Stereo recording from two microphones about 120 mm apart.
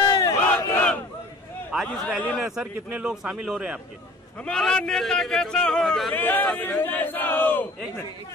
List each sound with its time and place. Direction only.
0.0 s battle cry: 30° left (ahead or behind)
1.9 s a man's voice: 10° left (ahead or behind)
4.5 s a man's voice: 5° left (ahead or behind)
6.1 s speech: 15° left (ahead or behind)